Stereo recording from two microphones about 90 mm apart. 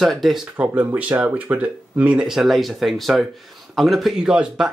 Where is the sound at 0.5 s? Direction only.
20° right (ahead or behind).